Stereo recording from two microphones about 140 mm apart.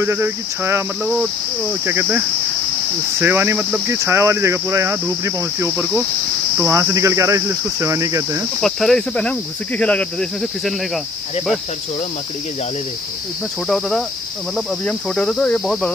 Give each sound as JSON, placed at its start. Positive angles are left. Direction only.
{"t": 0.0, "sound": "speech", "side_deg": -20}
{"t": 1.9, "sound": "speech", "side_deg": -15}
{"t": 3.8, "sound": "cricket", "side_deg": -20}
{"t": 8.5, "sound": "speech", "side_deg": 0}
{"t": 13.7, "sound": "cricket", "side_deg": 0}